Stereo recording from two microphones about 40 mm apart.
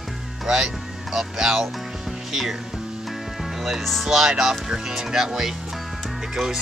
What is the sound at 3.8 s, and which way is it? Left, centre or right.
Speech, centre.